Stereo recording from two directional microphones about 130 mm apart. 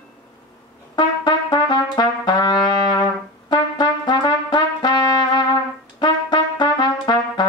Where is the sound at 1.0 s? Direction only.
35° left (ahead or behind).